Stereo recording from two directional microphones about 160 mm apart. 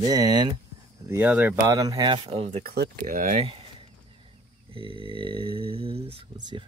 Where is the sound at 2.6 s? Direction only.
80° right.